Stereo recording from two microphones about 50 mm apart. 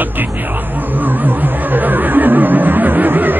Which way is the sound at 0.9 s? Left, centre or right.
Right.